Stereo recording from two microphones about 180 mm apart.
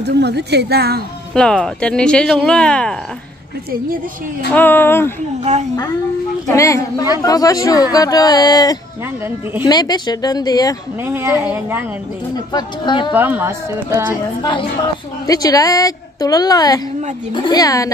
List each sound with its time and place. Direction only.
0.0 s speech: 65° right (ahead or behind)
1.3 s speech: 5° left (ahead or behind)
4.5 s speech: 10° left (ahead or behind)
5.5 s a woman's voice: 40° right (ahead or behind)
6.4 s a woman's voice: 15° left (ahead or behind)
11.1 s speech: 10° right (ahead or behind)
12.5 s a woman's voice: 25° left (ahead or behind)
13.1 s speech: 10° right (ahead or behind)
15.2 s a woman's voice: 20° left (ahead or behind)